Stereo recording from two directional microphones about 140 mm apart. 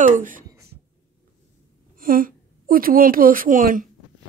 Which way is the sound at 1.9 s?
90° right.